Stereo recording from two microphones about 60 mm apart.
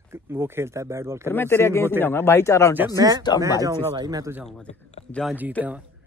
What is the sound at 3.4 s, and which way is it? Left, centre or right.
Speech, right.